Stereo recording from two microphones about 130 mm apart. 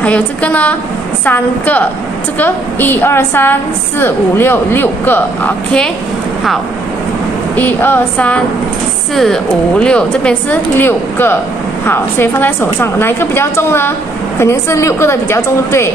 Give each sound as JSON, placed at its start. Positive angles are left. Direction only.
{"t": 0.0, "sound": "a woman's voice", "side_deg": 10}
{"t": 7.5, "sound": "a woman's voice", "side_deg": 15}
{"t": 9.1, "sound": "a woman's voice", "side_deg": 5}